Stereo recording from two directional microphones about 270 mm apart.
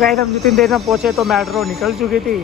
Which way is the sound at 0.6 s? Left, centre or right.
Centre.